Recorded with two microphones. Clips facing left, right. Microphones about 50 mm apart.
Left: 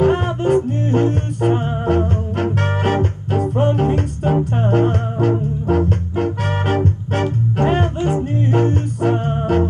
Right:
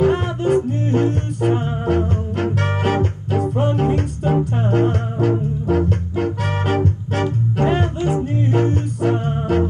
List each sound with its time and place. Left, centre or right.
0.0 s music: left